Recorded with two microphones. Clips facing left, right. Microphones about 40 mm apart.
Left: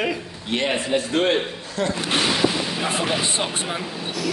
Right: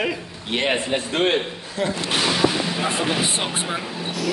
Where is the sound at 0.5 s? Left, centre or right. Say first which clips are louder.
Even; right; by 3.2 s centre.